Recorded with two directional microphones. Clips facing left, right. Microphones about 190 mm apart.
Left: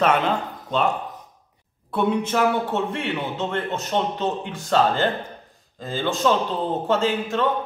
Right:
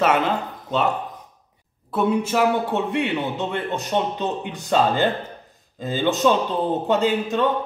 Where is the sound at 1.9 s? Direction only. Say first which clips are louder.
Right 1 dB; 5° right (ahead or behind).